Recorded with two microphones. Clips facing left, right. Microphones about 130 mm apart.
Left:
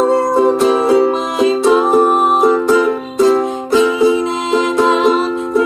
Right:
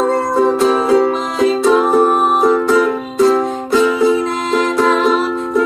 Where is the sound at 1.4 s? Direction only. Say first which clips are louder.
Left 1 dB; 20° left (ahead or behind).